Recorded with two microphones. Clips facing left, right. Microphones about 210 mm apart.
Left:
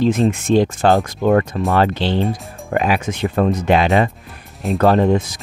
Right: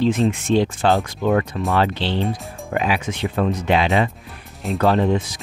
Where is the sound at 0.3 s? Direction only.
45° left (ahead or behind).